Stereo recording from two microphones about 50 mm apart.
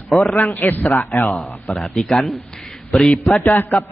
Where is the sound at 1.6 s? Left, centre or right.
Left.